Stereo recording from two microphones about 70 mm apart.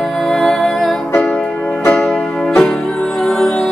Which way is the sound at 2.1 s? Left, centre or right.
Centre.